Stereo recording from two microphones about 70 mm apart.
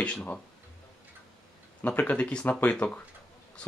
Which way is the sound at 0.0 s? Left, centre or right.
Centre.